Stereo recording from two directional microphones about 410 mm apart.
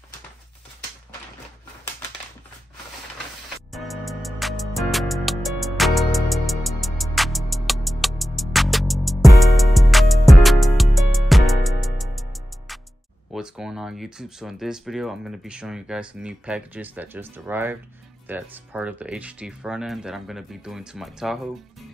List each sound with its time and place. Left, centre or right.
3.7 s music: centre
13.3 s speech: centre